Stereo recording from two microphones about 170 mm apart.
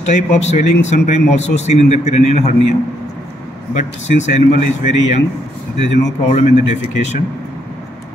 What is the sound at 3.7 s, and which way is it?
A man's voice, 45° left (ahead or behind).